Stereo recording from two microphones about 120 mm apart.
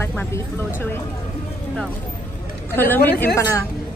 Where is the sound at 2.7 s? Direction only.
15° left (ahead or behind).